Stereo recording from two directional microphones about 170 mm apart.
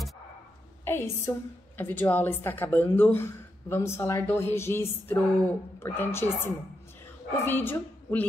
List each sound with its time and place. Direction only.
0.8 s a woman's voice: 15° left (ahead or behind)